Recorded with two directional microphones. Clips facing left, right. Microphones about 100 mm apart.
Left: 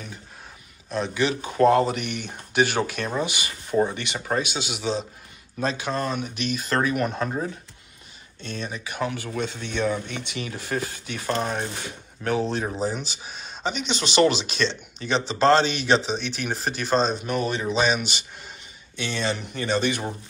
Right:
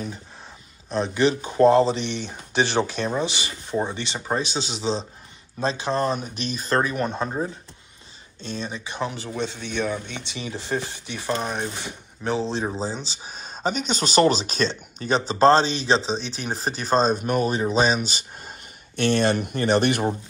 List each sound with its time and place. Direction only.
0.8 s speech: 30° right (ahead or behind); by 7.5 s 15° right (ahead or behind)
8.4 s speech: 25° right (ahead or behind)
11.2 s speech: 10° right (ahead or behind); by 18.5 s 35° right (ahead or behind)
18.9 s speech: 55° right (ahead or behind)